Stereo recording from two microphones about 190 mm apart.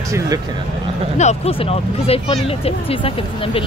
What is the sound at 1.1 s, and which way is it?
Speech, 35° left (ahead or behind).